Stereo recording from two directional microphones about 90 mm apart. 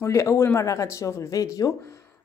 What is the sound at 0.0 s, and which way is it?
Speech, 30° left (ahead or behind).